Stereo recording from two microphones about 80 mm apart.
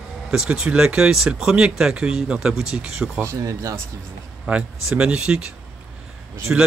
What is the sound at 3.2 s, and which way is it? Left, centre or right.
Speech, right.